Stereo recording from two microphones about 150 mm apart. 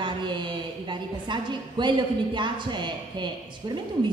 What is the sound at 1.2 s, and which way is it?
Speech, 30° right (ahead or behind).